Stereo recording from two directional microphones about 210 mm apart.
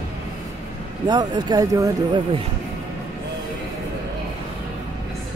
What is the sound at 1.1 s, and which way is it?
Speech, 20° right (ahead or behind).